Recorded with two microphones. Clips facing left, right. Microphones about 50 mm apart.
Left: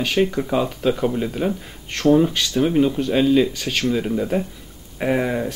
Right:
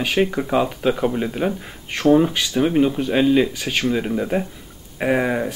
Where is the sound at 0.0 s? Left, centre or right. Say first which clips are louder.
Even; centre.